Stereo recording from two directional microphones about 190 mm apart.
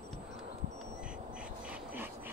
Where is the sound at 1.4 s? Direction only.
10° right (ahead or behind).